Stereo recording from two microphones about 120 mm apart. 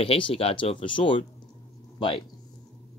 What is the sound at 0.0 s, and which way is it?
Speech, 50° left (ahead or behind).